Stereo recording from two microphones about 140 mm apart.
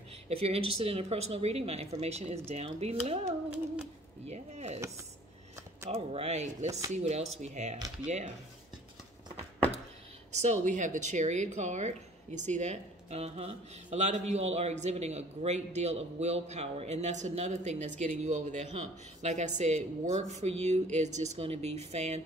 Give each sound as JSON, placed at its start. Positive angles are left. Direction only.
{"t": 0.3, "sound": "a woman's voice", "side_deg": -45}
{"t": 4.3, "sound": "a sound", "side_deg": -50}
{"t": 4.7, "sound": "speech", "side_deg": -20}
{"t": 5.9, "sound": "a woman's voice", "side_deg": -45}
{"t": 10.3, "sound": "a woman's voice", "side_deg": -55}